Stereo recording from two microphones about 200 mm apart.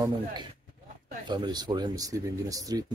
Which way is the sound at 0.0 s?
20° right (ahead or behind).